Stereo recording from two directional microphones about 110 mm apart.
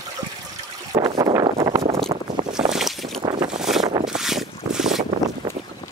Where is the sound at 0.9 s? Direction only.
35° right (ahead or behind).